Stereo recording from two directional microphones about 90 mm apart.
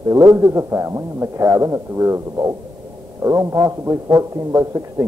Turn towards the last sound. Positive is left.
turn(degrees=-35)  # may be behind; listen again after turning